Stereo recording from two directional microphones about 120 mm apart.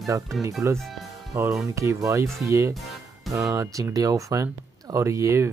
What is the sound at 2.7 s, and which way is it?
Music, centre (ahead or behind).